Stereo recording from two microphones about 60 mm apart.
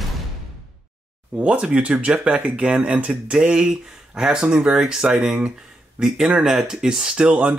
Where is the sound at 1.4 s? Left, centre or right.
Centre.